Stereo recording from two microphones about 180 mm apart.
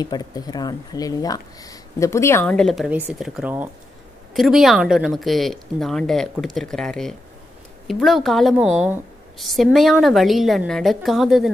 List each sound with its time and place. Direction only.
0.0 s a woman's voice: 20° left (ahead or behind); by 11.5 s centre (ahead or behind)